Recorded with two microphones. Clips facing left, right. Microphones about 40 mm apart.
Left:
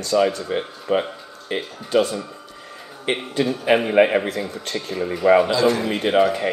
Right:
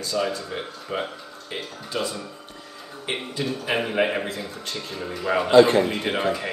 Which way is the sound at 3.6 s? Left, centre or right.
Left.